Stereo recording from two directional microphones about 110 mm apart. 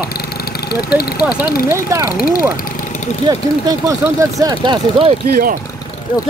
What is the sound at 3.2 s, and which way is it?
Speech, 35° right (ahead or behind).